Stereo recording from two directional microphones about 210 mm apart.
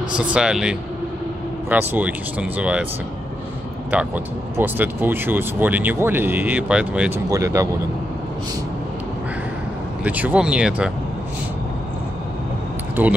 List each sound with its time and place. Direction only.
0.2 s speech: 5° right (ahead or behind)
3.9 s speech: 5° right (ahead or behind)
10.0 s speech: 5° right (ahead or behind)
13.0 s speech: 10° right (ahead or behind)